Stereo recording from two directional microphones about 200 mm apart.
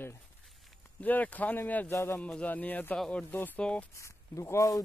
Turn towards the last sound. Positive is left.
turn(degrees=15)  # may be behind; listen again after turning